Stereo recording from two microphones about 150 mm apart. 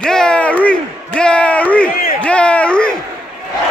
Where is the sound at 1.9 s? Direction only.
75° left (ahead or behind).